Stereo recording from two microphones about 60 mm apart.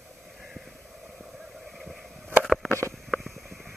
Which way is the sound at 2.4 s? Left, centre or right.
Centre.